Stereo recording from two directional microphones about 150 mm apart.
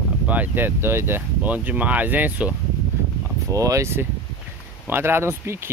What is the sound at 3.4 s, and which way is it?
Speech, 20° right (ahead or behind).